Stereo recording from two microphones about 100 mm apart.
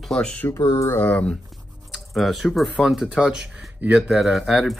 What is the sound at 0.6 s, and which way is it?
Speech, 35° left (ahead or behind).